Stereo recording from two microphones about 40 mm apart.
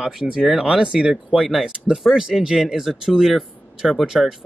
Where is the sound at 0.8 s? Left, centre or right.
Right.